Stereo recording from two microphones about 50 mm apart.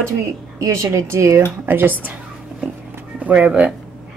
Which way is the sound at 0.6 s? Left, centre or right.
Right.